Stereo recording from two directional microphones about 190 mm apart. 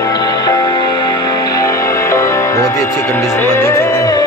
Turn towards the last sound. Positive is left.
turn(degrees=20)  # may be behind; listen again after turning